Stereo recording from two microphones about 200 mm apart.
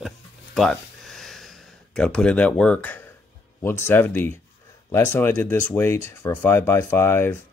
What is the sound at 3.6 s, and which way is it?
Speech, 10° left (ahead or behind).